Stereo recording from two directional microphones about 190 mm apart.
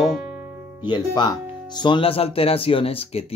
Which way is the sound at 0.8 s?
25° left (ahead or behind).